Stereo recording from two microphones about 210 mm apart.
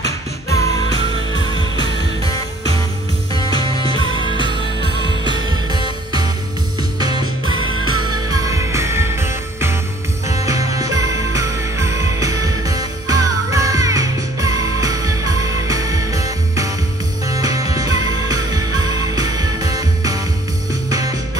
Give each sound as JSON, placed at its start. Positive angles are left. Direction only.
{"t": 0.0, "sound": "music", "side_deg": 15}
{"t": 3.3, "sound": "music", "side_deg": 20}
{"t": 4.0, "sound": "music", "side_deg": -25}
{"t": 7.0, "sound": "music", "side_deg": -20}
{"t": 7.6, "sound": "music", "side_deg": 80}
{"t": 8.0, "sound": "music", "side_deg": -20}